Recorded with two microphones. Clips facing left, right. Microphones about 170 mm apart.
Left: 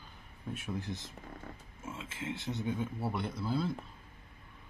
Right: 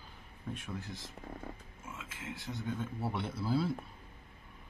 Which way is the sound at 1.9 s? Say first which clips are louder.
Left 5 dB; 25° left (ahead or behind).